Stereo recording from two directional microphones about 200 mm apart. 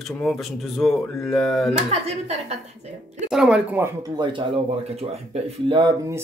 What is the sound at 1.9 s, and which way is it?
Speech, 30° right (ahead or behind).